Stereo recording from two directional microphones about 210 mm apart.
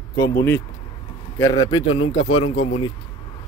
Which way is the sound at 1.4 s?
20° left (ahead or behind).